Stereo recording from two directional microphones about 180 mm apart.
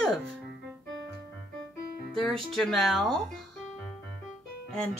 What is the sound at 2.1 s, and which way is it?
Speech, centre (ahead or behind).